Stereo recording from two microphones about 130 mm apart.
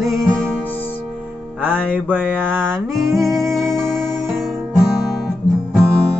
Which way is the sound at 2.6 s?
5° left (ahead or behind).